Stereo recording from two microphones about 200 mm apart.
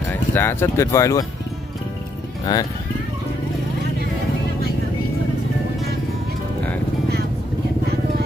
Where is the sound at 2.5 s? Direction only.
15° left (ahead or behind).